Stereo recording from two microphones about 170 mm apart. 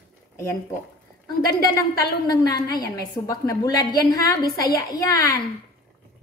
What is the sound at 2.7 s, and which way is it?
A woman's voice, 25° left (ahead or behind).